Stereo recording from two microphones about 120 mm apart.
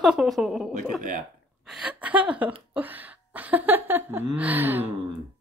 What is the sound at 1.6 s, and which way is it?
Speech, 5° right (ahead or behind).